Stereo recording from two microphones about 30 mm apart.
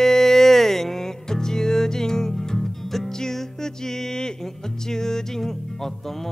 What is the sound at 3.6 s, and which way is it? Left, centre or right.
Music, left.